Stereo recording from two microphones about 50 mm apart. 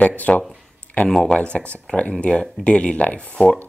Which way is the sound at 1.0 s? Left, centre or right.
Centre.